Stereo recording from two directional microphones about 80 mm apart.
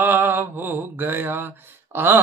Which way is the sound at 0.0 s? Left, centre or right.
Right.